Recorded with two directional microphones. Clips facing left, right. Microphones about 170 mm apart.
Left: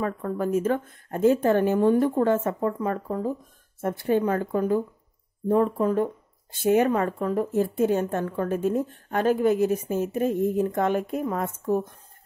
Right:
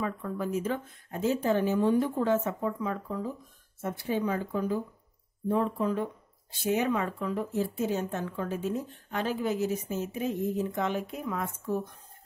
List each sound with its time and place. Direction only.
0.0 s speech: 50° left (ahead or behind)